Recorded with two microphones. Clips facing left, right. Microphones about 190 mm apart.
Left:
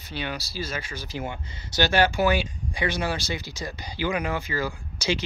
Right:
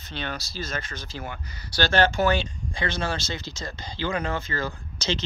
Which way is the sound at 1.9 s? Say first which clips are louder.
Right 1 dB; 15° left (ahead or behind).